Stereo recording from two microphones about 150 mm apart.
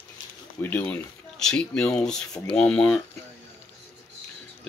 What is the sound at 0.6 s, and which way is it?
Speech, 10° left (ahead or behind).